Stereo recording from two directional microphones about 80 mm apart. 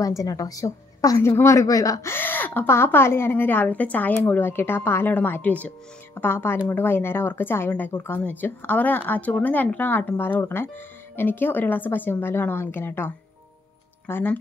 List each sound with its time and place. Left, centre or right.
0.2 s a woman's voice: left
2.0 s speech: left